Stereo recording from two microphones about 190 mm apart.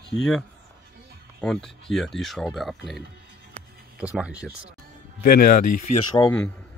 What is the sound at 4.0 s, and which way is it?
Speech, 5° right (ahead or behind).